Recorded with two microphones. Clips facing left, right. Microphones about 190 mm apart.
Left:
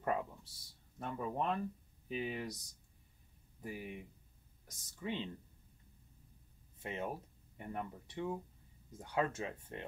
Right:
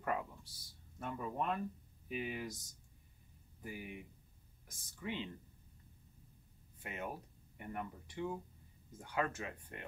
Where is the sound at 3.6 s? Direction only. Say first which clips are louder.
Left 2 dB; 25° left (ahead or behind).